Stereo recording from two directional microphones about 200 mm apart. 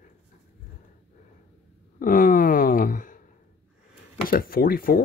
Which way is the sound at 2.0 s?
40° left (ahead or behind).